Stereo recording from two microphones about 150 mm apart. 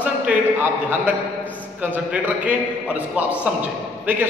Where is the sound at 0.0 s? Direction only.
10° right (ahead or behind).